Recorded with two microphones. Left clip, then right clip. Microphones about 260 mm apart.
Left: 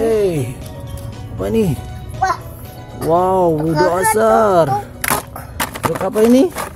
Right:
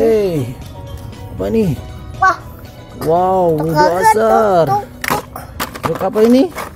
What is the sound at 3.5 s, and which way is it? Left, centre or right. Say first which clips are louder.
Speech: right 3 dB; right.